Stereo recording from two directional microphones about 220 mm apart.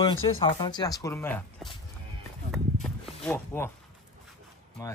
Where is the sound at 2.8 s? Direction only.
5° left (ahead or behind).